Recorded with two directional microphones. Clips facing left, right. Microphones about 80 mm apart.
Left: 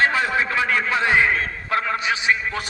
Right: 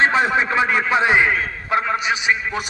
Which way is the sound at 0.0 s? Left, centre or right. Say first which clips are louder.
Right 3 dB; right.